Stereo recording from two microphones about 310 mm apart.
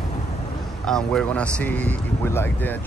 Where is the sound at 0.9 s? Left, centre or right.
Centre.